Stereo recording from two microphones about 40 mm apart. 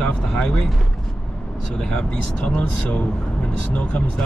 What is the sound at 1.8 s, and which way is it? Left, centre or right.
Speech, left.